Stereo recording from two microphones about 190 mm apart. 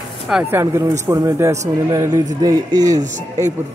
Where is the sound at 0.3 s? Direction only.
10° right (ahead or behind).